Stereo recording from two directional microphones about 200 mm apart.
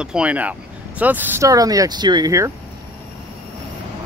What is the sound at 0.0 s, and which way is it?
Speech, 5° right (ahead or behind).